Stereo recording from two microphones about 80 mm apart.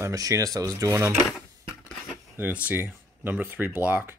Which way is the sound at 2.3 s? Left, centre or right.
Right.